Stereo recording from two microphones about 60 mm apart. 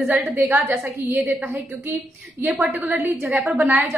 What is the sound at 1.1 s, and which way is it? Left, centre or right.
A woman's voice, right.